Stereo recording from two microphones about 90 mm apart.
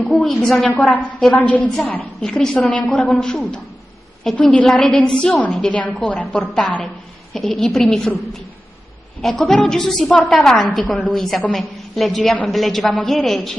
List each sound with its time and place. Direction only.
0.0 s a woman's voice: 5° left (ahead or behind)
9.2 s a woman's voice: 5° left (ahead or behind)